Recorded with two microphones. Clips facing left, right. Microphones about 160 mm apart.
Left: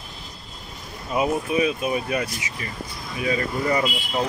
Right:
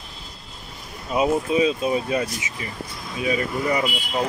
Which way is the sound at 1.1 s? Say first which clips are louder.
Right 2 dB; 20° right (ahead or behind).